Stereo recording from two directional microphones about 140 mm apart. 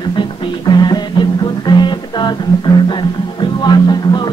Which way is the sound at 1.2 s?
35° left (ahead or behind).